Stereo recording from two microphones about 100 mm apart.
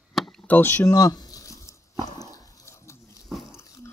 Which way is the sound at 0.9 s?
40° left (ahead or behind).